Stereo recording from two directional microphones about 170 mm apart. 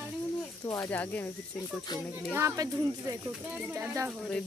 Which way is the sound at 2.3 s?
20° right (ahead or behind).